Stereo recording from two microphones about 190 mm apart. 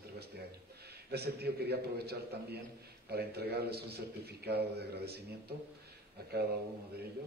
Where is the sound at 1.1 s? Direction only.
55° right (ahead or behind).